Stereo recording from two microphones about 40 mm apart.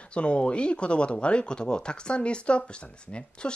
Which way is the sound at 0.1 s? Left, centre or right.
Left.